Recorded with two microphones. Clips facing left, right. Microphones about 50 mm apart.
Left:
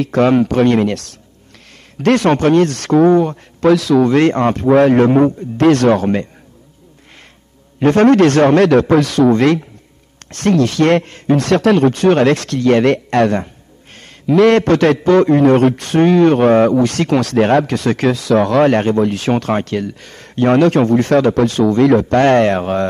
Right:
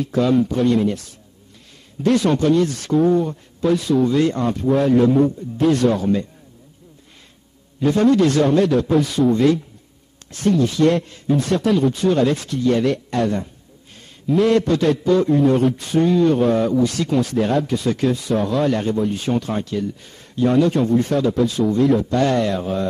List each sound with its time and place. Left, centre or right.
0.0 s a man's voice: left
7.8 s a man's voice: left